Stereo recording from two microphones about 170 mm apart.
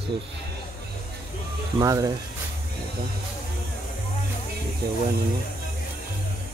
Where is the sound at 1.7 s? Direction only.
20° right (ahead or behind).